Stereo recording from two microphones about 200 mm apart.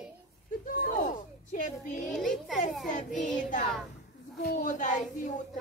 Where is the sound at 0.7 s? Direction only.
45° left (ahead or behind).